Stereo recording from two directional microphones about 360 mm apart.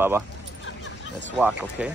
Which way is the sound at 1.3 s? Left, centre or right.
Centre.